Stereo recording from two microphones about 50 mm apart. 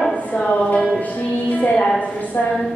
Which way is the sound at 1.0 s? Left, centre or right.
Left.